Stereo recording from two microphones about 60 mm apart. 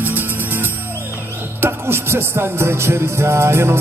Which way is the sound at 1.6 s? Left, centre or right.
Right.